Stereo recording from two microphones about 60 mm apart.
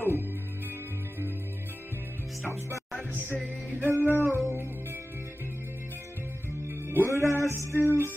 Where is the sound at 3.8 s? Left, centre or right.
Right.